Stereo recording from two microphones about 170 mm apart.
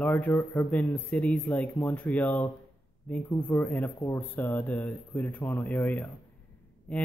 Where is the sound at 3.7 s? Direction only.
10° left (ahead or behind).